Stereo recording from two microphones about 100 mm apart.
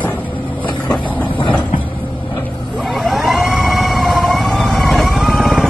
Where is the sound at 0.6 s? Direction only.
55° left (ahead or behind).